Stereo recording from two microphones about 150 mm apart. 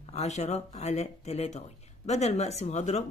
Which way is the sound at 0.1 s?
45° left (ahead or behind).